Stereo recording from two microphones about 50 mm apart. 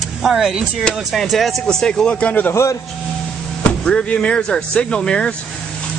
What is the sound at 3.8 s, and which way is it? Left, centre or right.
Speech, centre.